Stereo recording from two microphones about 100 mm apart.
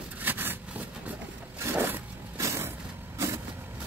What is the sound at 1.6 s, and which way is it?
Vehicle, 20° right (ahead or behind).